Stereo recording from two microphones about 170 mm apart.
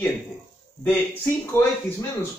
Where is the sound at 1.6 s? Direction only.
15° left (ahead or behind).